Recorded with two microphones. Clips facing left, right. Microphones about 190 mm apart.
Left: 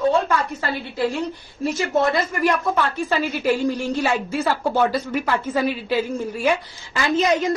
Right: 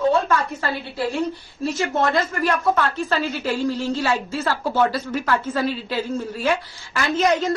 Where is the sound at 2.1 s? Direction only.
15° left (ahead or behind).